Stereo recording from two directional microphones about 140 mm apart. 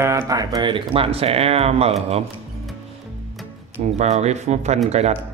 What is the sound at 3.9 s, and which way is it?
Speech, 55° right (ahead or behind).